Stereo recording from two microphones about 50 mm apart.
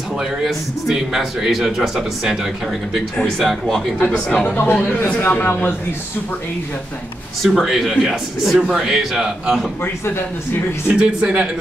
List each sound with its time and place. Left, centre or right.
0.2 s a man's voice: centre
3.3 s speech: centre
4.1 s speech: left
4.6 s a man's voice: left
7.4 s speech: centre
8.5 s a man's voice: centre
10.9 s speech: right